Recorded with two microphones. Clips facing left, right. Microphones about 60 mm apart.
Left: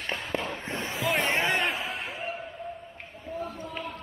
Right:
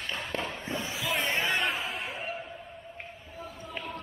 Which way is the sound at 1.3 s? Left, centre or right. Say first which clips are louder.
Left 2 dB; centre.